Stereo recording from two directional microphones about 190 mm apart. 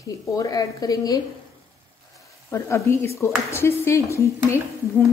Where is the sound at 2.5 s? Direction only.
15° left (ahead or behind).